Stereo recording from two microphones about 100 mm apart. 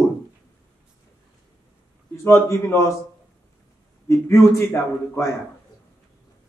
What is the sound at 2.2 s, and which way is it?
Speech, 25° left (ahead or behind).